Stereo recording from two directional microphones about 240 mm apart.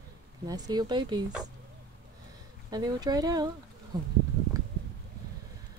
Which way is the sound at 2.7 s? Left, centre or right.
Centre.